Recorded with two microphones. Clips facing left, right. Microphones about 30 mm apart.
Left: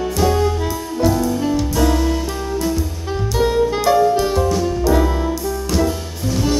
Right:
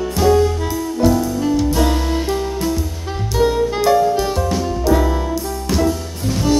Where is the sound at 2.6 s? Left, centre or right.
Centre.